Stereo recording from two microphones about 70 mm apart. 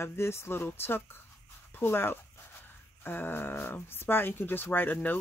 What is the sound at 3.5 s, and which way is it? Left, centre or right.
Speech, left.